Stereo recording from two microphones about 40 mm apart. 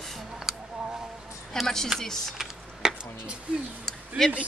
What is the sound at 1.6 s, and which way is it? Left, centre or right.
Speech, centre.